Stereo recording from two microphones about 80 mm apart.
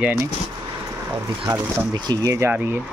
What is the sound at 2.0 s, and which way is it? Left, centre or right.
Speech, right.